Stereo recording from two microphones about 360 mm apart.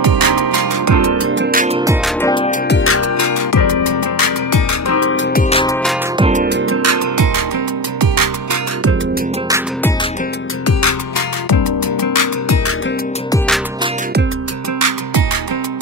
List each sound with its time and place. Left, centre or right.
0.0 s music: right
2.2 s music: centre
2.7 s music: left
4.8 s music: left
5.3 s music: centre
6.1 s music: centre; by 7.2 s right
10.8 s music: left